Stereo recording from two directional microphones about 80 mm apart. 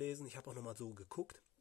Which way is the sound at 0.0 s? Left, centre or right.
Centre.